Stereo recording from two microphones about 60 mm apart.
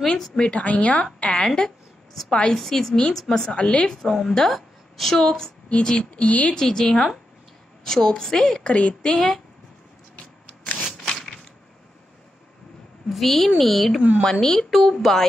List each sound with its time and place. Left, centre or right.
0.2 s a woman's voice: centre
1.0 s a woman's voice: centre
6.5 s a woman's voice: centre
10.8 s a sound: centre
13.1 s speech: centre